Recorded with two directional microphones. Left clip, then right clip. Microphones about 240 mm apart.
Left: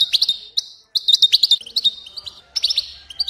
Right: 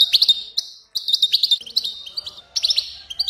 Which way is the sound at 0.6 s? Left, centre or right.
Left.